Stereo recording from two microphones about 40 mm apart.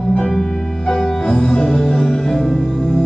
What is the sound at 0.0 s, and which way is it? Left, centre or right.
Music, centre.